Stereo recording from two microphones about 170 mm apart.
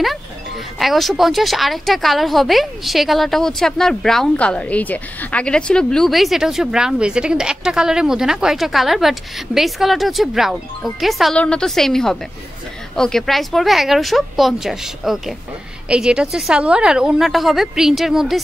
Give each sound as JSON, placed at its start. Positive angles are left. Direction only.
{"t": 0.7, "sound": "speech", "side_deg": 0}